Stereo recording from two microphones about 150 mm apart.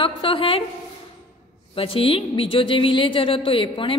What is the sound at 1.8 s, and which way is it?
A woman's voice, 40° left (ahead or behind).